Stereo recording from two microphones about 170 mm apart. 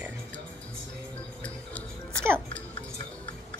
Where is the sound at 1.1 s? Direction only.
5° left (ahead or behind).